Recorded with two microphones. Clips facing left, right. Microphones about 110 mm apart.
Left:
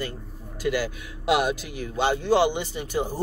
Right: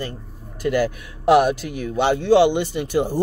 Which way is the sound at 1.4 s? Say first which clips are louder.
Right 7 dB; 60° right (ahead or behind).